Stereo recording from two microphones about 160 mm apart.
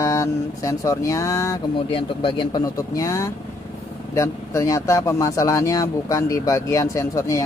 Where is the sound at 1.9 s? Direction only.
35° left (ahead or behind).